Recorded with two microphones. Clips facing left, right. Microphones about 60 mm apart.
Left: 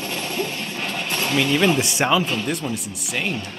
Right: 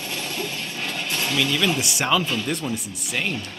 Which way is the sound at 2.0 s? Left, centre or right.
Centre.